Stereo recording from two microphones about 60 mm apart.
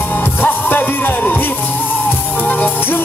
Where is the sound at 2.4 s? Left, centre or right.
Left.